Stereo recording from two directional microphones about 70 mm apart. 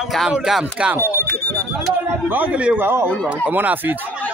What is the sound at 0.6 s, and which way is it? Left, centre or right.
Speech, centre.